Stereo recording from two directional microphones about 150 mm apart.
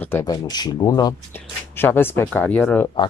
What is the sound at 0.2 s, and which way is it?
Speech, 25° left (ahead or behind).